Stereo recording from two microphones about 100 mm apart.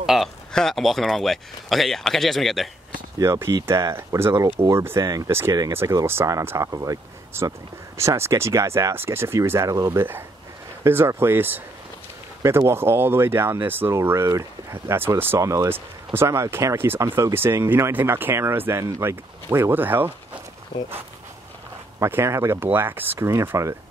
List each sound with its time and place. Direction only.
0.0 s a sound: 5° right (ahead or behind)
0.5 s speech: 5° left (ahead or behind)
3.2 s speech: 30° right (ahead or behind)
5.7 s speech: 25° right (ahead or behind)
20.7 s speech: 45° left (ahead or behind)
22.0 s speech: 25° right (ahead or behind)